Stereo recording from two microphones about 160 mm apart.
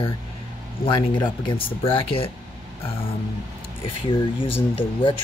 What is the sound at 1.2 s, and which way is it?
Speech, 30° left (ahead or behind).